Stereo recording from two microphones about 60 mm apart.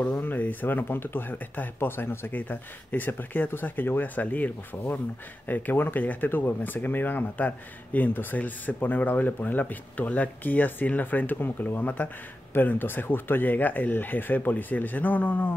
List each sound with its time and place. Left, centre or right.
0.2 s speech: left